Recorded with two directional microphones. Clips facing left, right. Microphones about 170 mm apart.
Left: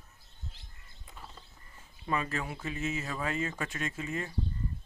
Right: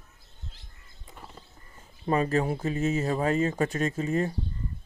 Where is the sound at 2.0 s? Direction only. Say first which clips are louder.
Right 9 dB; 40° right (ahead or behind).